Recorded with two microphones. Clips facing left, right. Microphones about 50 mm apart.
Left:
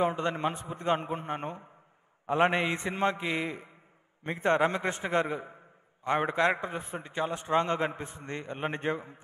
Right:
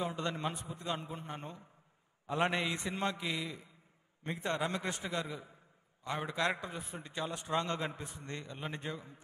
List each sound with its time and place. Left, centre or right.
0.0 s a man's voice: left